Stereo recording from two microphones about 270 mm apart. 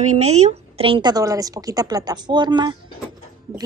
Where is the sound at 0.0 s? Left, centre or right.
Right.